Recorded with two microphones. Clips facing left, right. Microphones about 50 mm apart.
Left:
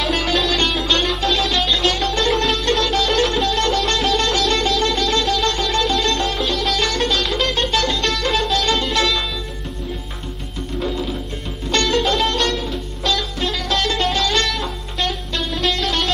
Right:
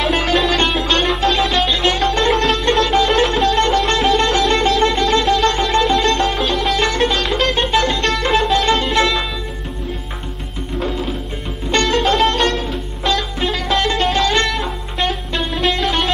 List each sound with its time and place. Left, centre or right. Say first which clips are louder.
0.0 s music: right 3 dB; centre
2.6 s sitar: right 4 dB; centre
3.8 s music: right 4 dB; centre
7.5 s music: right 3 dB; centre
11.9 s music: right 4 dB; centre